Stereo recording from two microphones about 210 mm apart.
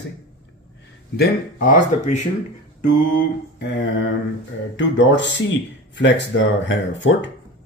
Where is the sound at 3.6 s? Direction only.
60° left (ahead or behind).